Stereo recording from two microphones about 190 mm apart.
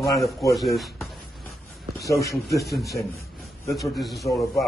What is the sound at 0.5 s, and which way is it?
Speech, centre (ahead or behind).